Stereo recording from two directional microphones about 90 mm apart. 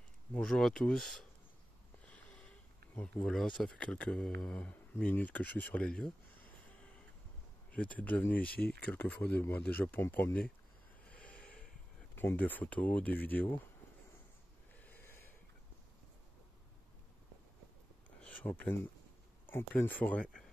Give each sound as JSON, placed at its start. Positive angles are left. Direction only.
{"t": 0.3, "sound": "speech", "side_deg": 5}
{"t": 2.0, "sound": "a sound", "side_deg": 15}
{"t": 3.3, "sound": "speech", "side_deg": 5}
{"t": 11.1, "sound": "snort", "side_deg": 15}
{"t": 12.2, "sound": "speech", "side_deg": 20}
{"t": 14.8, "sound": "snort", "side_deg": 20}
{"t": 18.5, "sound": "speech", "side_deg": 25}